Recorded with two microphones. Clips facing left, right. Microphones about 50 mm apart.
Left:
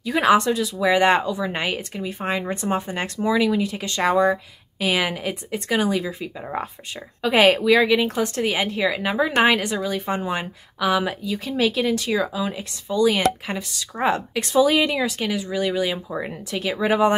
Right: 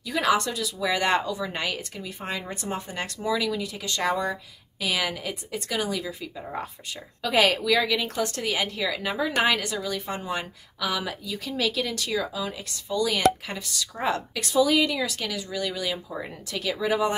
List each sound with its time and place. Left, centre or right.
0.0 s a woman's voice: left
16.8 s speech: left